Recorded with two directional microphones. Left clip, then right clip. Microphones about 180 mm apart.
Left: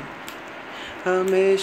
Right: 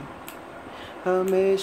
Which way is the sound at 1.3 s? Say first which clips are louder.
Left 4 dB; 40° right (ahead or behind).